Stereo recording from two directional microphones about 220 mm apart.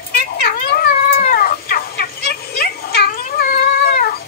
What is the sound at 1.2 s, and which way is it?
Cat, 40° left (ahead or behind).